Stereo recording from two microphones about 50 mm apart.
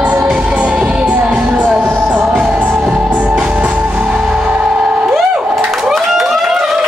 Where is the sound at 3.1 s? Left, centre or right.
Right.